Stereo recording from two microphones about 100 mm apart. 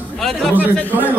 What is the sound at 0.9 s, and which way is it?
Speech, 15° right (ahead or behind).